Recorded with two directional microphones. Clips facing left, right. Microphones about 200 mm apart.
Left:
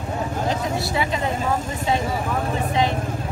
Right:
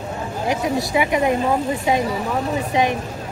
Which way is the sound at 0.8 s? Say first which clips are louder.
Right 5 dB; 15° right (ahead or behind).